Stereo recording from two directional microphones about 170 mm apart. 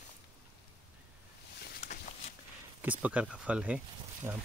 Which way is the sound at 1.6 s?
65° left (ahead or behind).